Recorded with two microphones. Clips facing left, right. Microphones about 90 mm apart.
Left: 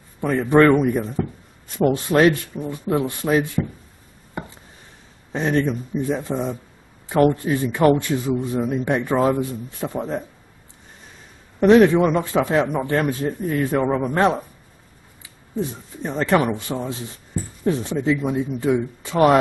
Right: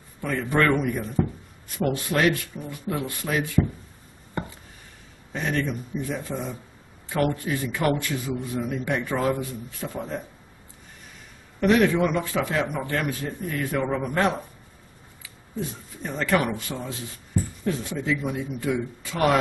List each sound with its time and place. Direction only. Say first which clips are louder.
0.2 s a man's voice: left 8 dB; 30° left (ahead or behind)
5.3 s a man's voice: left 6 dB; 30° left (ahead or behind)
11.6 s a man's voice: left 7 dB; 30° left (ahead or behind)
16.0 s a man's voice: left 5 dB; 25° left (ahead or behind)